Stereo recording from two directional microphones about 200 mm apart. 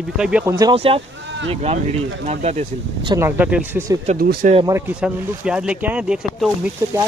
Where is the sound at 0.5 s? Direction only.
25° right (ahead or behind).